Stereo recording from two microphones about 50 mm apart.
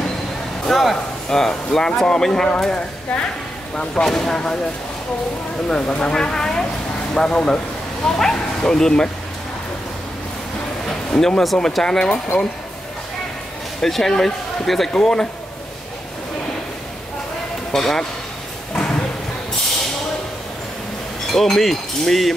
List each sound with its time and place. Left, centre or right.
0.7 s speech: centre
3.7 s speech: centre
5.7 s speech: centre
10.9 s speech: centre
13.7 s speech: centre
17.7 s speech: centre
18.8 s a sound: centre
21.3 s speech: centre